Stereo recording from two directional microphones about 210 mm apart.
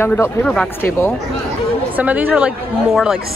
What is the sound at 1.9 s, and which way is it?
Speech, 10° right (ahead or behind).